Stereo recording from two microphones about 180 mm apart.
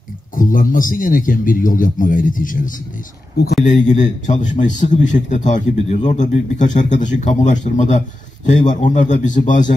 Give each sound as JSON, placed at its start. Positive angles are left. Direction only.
{"t": 0.4, "sound": "a man's voice", "side_deg": 50}